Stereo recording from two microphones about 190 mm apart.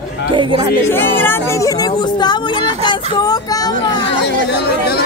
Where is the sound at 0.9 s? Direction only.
10° left (ahead or behind).